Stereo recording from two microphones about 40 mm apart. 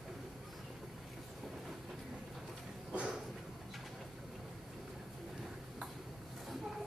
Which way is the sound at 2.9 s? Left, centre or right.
Right.